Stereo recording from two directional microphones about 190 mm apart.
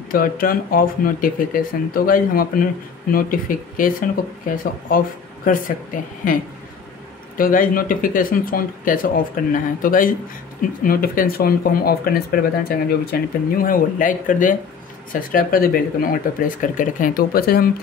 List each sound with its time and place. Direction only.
0.1 s speech: 50° left (ahead or behind)